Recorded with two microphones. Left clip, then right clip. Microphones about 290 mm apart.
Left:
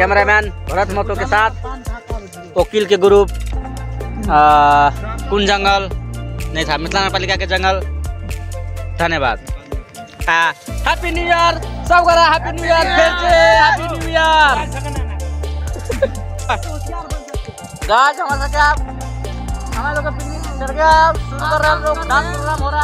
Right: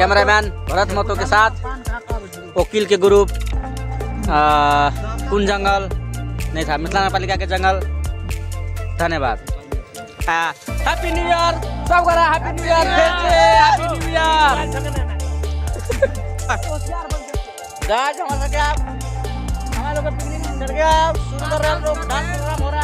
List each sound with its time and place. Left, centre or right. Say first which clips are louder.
0.0 s music: left 1 dB; centre
2.0 s speech: even; centre
6.5 s music: left 2 dB; centre
8.9 s music: left 3 dB; centre
10.2 s speech: left 5 dB; centre
10.9 s speech: left 3 dB; left
12.4 s music: left 3 dB; centre
13.3 s speech: left 1 dB; centre
14.6 s music: even; right
15.9 s speech: even; centre
16.4 s music: left 2 dB; centre